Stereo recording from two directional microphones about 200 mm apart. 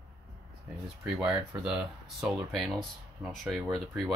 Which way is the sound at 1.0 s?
5° right (ahead or behind).